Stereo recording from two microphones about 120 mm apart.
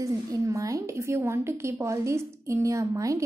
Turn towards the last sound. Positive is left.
turn(degrees=-25)  # may be behind; listen again after turning